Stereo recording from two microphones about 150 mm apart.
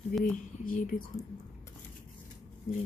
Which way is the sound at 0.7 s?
65° left (ahead or behind).